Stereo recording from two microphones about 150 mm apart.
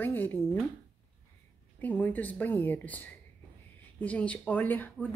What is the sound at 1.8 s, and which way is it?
Speech, 10° left (ahead or behind).